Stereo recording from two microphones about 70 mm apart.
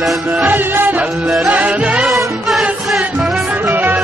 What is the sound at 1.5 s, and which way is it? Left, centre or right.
Music, centre.